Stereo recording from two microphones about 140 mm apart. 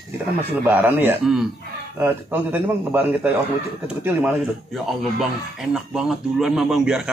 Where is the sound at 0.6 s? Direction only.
15° right (ahead or behind).